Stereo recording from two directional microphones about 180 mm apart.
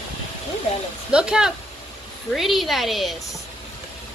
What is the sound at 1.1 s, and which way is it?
A woman's voice, 5° right (ahead or behind).